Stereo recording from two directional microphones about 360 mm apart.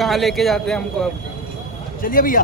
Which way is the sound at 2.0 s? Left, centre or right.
Left.